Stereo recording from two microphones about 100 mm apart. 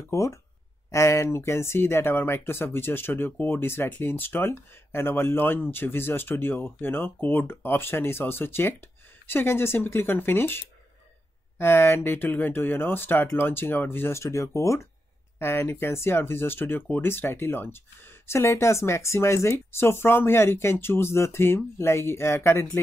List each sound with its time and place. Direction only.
0.0 s speech: 30° left (ahead or behind)